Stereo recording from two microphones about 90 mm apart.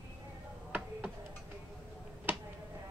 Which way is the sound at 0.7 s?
15° right (ahead or behind).